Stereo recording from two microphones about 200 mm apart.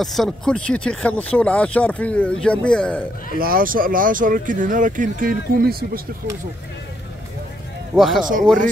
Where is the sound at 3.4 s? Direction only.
45° right (ahead or behind).